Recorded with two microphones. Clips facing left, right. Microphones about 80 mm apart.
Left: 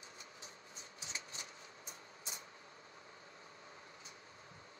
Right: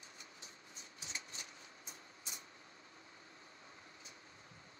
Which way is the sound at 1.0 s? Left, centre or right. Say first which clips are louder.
Even; left.